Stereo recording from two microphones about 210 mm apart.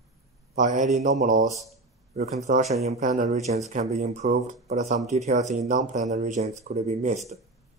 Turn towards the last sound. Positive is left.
turn(degrees=-30)  # may be behind; listen again after turning